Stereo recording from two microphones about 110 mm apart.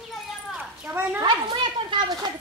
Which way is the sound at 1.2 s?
45° right (ahead or behind).